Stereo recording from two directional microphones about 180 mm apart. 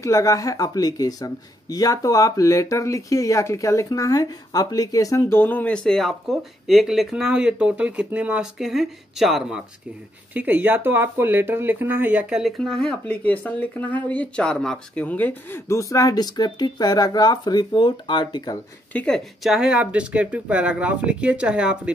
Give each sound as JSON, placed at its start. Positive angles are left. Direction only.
{"t": 0.0, "sound": "speech", "side_deg": 20}
{"t": 18.9, "sound": "speech", "side_deg": 5}